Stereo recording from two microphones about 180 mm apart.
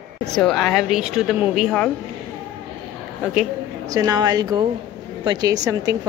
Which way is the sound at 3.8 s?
20° right (ahead or behind).